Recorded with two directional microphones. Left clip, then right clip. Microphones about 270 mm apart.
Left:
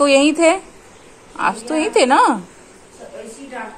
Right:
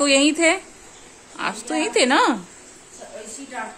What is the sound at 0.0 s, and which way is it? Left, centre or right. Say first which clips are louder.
A woman's voice: left 5 dB; centre.